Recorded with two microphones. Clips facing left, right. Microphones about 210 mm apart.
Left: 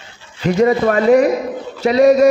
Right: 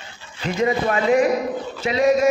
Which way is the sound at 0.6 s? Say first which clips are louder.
Left 6 dB; 40° left (ahead or behind).